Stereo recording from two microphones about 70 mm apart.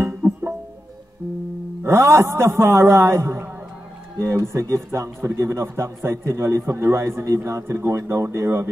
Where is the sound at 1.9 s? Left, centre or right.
Right.